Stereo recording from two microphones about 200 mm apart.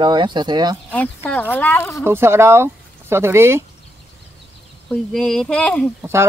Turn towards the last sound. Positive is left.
turn(degrees=-10)  # may be behind; listen again after turning